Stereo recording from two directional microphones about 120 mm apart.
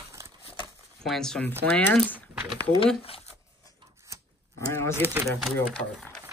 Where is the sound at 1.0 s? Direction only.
5° left (ahead or behind).